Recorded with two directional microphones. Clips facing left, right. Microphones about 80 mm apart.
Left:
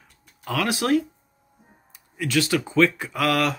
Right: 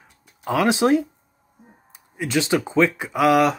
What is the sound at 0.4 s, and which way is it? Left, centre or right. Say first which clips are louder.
Speech: right 6 dB; right.